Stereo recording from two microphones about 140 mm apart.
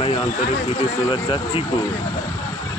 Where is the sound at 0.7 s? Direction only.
35° left (ahead or behind).